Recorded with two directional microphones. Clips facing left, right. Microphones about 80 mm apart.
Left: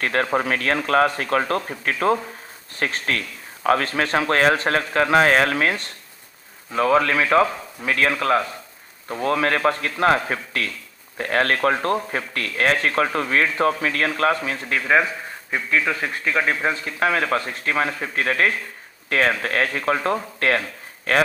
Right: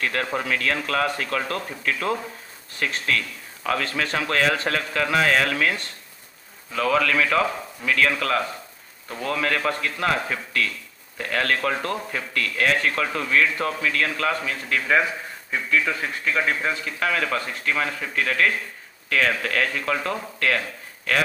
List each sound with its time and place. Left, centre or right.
0.0 s a man's voice: left